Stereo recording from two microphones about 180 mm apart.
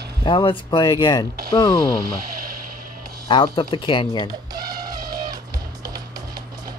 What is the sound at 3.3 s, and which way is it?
Speech, 25° left (ahead or behind).